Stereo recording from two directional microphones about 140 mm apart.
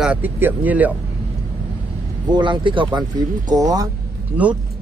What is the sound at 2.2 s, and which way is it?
Speech, 30° right (ahead or behind).